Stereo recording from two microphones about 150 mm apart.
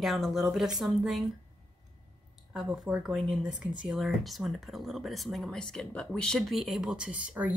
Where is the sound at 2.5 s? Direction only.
5° right (ahead or behind).